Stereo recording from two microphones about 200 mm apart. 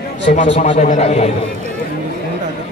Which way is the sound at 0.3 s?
35° left (ahead or behind).